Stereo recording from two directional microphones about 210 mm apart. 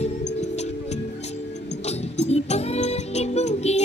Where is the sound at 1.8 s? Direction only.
30° left (ahead or behind).